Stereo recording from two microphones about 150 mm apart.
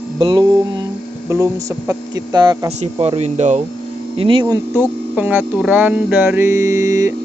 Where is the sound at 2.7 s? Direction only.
45° right (ahead or behind).